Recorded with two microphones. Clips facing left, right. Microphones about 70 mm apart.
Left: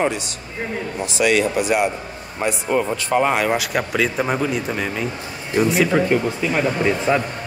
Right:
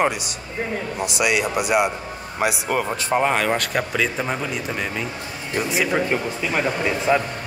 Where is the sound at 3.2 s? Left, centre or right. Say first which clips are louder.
Left 1 dB; centre.